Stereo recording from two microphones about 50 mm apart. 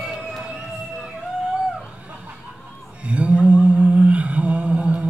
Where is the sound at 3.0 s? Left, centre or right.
Right.